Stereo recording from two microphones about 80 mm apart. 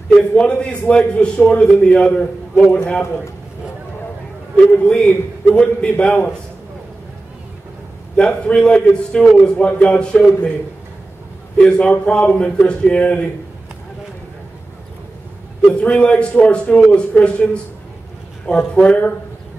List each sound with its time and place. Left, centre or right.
0.1 s a man's voice: centre
4.6 s a man's voice: centre
8.2 s a man's voice: centre
11.5 s a man's voice: centre
15.6 s a man's voice: centre
18.8 s a man's voice: centre